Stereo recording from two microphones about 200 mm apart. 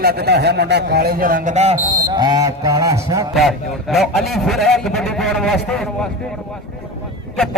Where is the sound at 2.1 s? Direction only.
20° right (ahead or behind).